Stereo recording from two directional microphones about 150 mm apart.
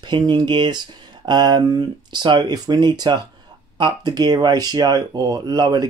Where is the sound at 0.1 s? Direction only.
30° right (ahead or behind).